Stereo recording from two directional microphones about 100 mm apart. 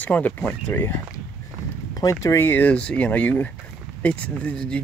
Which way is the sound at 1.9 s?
35° left (ahead or behind).